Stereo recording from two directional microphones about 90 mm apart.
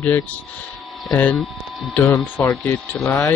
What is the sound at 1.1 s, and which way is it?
Speech, 15° left (ahead or behind).